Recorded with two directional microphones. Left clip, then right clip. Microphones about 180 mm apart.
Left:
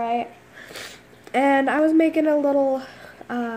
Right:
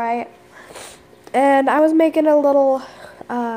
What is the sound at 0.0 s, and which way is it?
Speech, 40° right (ahead or behind).